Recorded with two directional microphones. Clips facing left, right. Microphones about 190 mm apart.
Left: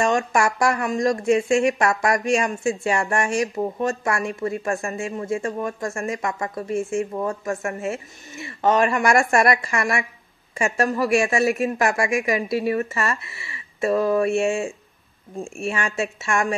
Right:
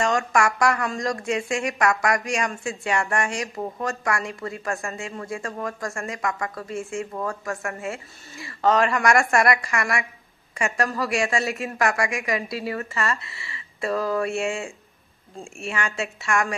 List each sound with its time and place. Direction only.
0.0 s speech: 25° left (ahead or behind)